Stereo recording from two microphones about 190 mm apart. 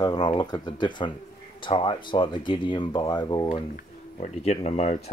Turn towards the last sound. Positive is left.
turn(degrees=35)  # may be behind; listen again after turning